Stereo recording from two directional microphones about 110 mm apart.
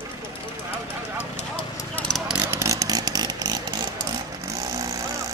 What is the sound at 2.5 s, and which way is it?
Chainsaw, 30° right (ahead or behind).